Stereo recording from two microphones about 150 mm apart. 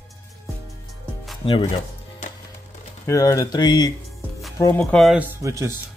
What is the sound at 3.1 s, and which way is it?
Speech, 20° left (ahead or behind).